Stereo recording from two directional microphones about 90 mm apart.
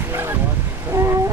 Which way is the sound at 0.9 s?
30° right (ahead or behind).